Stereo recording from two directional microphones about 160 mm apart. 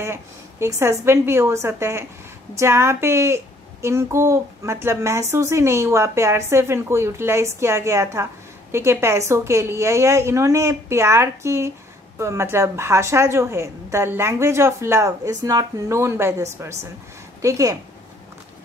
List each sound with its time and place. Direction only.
0.0 s a woman's voice: 15° right (ahead or behind)